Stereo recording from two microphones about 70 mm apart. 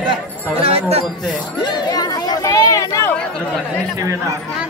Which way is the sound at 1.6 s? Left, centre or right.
Left.